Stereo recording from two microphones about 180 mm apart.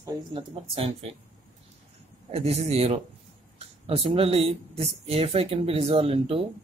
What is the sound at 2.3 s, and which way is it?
Speech, 35° right (ahead or behind).